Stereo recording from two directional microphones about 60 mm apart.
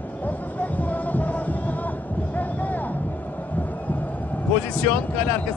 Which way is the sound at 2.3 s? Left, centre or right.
Left.